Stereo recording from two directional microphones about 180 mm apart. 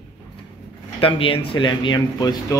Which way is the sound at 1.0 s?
30° left (ahead or behind).